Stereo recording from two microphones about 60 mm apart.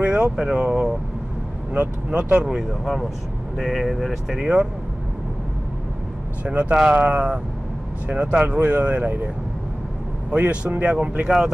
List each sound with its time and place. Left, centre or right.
0.0 s speech: centre
2.5 s speech: centre
6.4 s speech: centre
6.8 s speech: centre
7.1 s speech: centre
10.3 s speech: right